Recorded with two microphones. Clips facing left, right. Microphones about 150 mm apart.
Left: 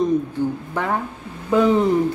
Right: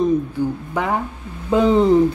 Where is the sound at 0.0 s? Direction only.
10° right (ahead or behind).